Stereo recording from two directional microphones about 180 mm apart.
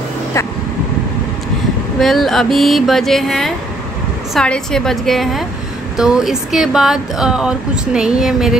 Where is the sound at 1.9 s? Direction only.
Centre (ahead or behind).